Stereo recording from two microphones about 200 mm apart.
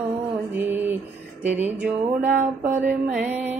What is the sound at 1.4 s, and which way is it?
Speech, 10° right (ahead or behind).